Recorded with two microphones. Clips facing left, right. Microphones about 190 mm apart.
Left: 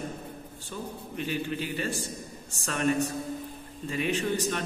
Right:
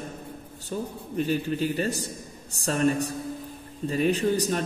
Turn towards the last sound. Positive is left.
turn(degrees=-40)  # may be behind; listen again after turning